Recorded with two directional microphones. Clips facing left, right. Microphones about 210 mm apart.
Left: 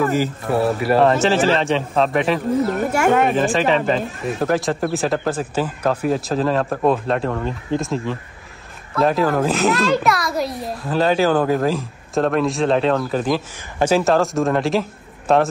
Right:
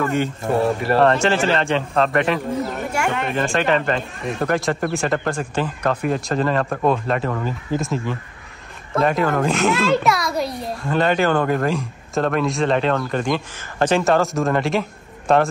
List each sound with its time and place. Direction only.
0.0 s a child's voice: 5° left (ahead or behind)
3.0 s a sound: 45° left (ahead or behind)
3.3 s a child's voice: centre (ahead or behind)